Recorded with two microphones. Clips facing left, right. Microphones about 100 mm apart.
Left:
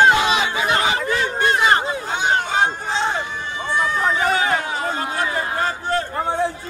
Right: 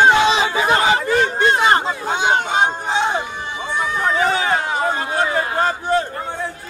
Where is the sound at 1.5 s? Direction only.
30° right (ahead or behind).